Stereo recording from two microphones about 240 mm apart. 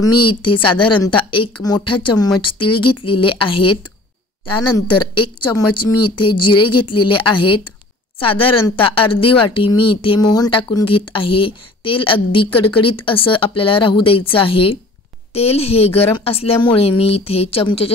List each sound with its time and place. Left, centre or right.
0.4 s speech: left
5.7 s a woman's voice: left
6.5 s speech: centre